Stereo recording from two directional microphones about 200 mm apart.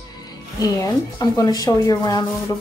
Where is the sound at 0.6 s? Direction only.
20° left (ahead or behind).